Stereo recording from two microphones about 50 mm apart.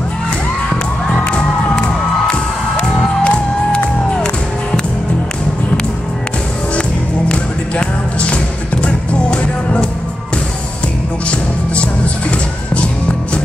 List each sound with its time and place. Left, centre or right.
2.8 s music: left
7.2 s music: left
11.2 s music: left